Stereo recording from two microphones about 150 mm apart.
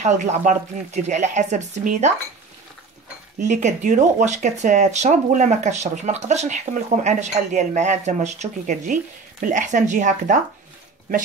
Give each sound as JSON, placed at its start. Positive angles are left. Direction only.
{"t": 0.0, "sound": "speech", "side_deg": -60}
{"t": 3.4, "sound": "speech", "side_deg": -55}